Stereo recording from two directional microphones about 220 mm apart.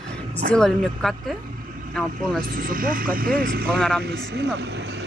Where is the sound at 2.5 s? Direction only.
40° right (ahead or behind).